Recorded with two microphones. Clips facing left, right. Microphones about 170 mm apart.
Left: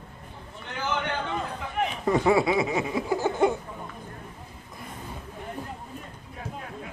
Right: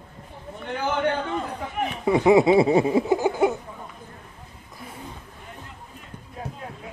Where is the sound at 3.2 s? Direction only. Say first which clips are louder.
Right 2 dB; 15° right (ahead or behind).